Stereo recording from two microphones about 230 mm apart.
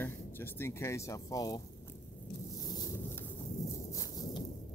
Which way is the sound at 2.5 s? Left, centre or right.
Centre.